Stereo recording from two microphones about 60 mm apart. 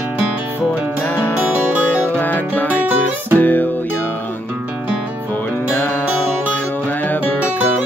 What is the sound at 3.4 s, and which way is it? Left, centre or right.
Music, left.